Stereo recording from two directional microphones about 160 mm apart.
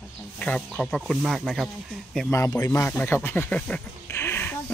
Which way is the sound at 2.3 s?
15° left (ahead or behind).